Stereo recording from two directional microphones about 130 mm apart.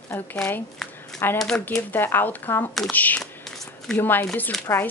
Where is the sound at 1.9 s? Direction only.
15° left (ahead or behind).